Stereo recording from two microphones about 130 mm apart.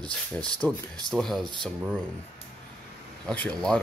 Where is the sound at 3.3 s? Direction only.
10° left (ahead or behind).